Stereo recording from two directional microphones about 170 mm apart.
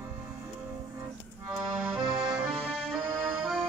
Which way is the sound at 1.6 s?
5° right (ahead or behind).